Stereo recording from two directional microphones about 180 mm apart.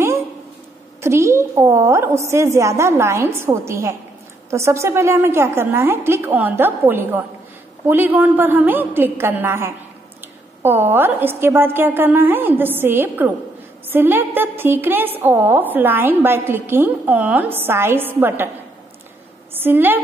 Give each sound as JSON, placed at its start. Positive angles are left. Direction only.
{"t": 1.0, "sound": "a woman's voice", "side_deg": -15}
{"t": 19.5, "sound": "a woman's voice", "side_deg": -10}